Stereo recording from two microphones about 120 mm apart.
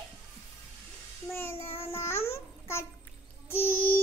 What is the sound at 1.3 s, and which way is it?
Child singing, 20° left (ahead or behind).